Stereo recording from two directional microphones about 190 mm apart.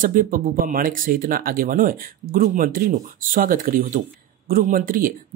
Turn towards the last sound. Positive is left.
turn(degrees=-45)  # may be behind; listen again after turning